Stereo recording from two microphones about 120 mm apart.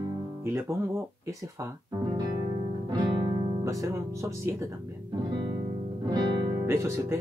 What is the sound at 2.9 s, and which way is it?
Music, 40° right (ahead or behind).